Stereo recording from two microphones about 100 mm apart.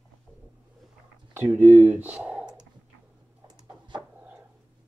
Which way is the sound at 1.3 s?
20° right (ahead or behind).